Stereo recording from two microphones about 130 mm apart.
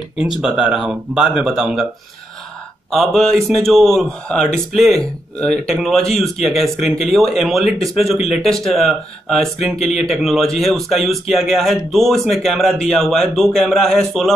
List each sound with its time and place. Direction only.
0.4 s speech: 5° right (ahead or behind)
2.9 s speech: centre (ahead or behind)
9.8 s speech: 60° left (ahead or behind)
10.1 s speech: centre (ahead or behind)